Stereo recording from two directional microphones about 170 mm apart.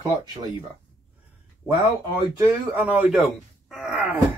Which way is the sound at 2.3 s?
10° right (ahead or behind).